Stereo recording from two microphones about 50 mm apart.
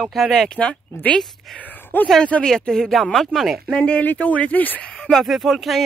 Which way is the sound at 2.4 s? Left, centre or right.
Centre.